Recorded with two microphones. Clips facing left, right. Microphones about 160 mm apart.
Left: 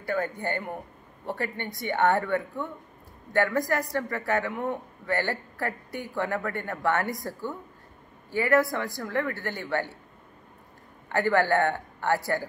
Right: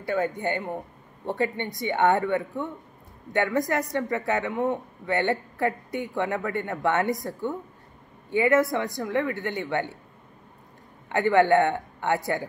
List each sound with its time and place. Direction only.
0.0 s speech: 20° right (ahead or behind)
11.1 s speech: 20° right (ahead or behind)